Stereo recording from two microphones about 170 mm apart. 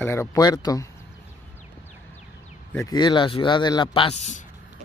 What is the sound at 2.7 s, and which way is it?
Speech, 15° left (ahead or behind).